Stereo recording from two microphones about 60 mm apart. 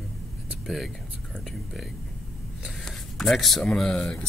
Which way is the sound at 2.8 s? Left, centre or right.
Centre.